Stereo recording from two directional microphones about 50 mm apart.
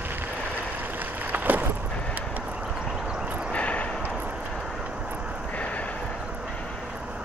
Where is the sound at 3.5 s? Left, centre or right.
Left.